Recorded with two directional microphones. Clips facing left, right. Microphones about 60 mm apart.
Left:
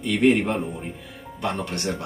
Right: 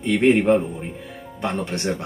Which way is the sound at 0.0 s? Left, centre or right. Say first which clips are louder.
Right 3 dB; right.